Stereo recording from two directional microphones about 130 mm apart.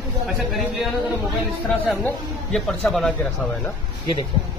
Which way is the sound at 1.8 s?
5° left (ahead or behind).